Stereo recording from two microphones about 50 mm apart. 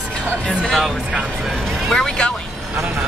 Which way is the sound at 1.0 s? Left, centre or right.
Centre.